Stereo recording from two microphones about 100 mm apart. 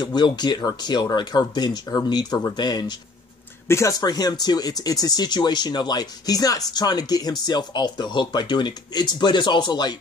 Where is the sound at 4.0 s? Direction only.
40° left (ahead or behind).